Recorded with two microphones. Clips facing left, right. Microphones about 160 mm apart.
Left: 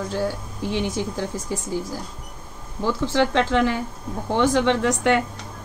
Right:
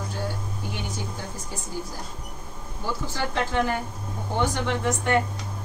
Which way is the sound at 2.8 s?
90° left.